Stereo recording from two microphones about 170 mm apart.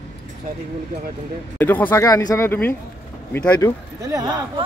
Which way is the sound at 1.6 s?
10° left (ahead or behind).